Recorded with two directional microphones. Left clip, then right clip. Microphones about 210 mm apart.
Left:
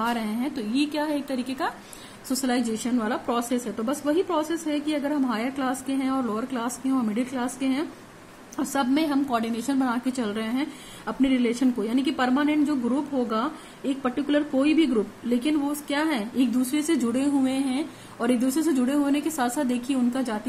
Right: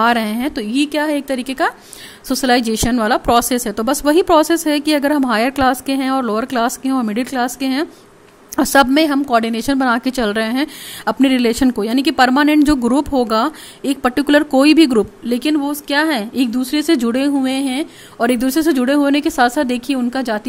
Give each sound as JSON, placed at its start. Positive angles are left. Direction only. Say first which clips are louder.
{"t": 0.0, "sound": "a woman's voice", "louder": "right 12 dB", "side_deg": -45}